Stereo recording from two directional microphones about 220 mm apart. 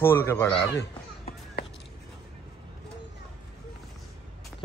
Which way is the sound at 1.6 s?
45° left (ahead or behind).